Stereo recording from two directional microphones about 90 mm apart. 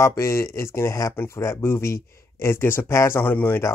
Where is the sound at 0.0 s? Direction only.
30° left (ahead or behind).